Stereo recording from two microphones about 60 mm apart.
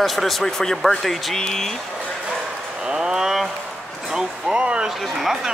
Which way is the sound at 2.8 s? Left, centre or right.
Centre.